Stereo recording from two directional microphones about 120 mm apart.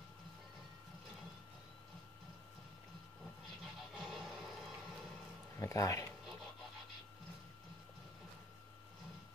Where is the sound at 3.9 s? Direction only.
Centre (ahead or behind).